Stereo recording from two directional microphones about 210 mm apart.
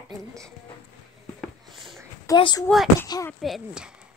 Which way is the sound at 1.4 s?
Centre (ahead or behind).